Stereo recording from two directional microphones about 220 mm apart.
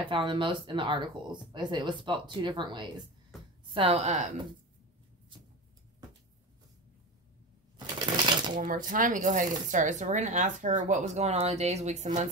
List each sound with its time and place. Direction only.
0.0 s speech: 20° right (ahead or behind)
8.3 s shuffling cards: 20° right (ahead or behind)
8.5 s speech: 35° right (ahead or behind)